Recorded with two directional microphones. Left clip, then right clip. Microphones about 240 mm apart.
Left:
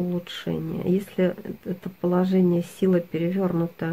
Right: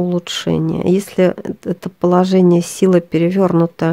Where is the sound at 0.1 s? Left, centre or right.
Right.